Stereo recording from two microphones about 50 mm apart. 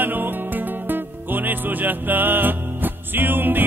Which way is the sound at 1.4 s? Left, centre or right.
Right.